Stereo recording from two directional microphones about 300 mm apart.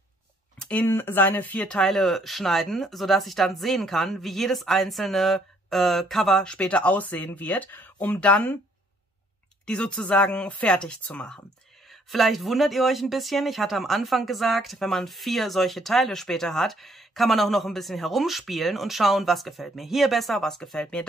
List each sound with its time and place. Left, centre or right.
0.6 s speech: centre
9.7 s speech: centre